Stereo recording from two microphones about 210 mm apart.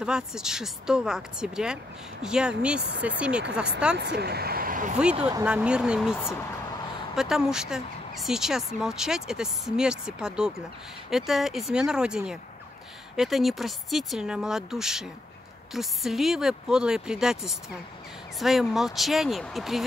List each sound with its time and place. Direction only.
0.0 s speech: 5° right (ahead or behind)
3.9 s speech: 55° right (ahead or behind)
5.4 s speech: 5° right (ahead or behind)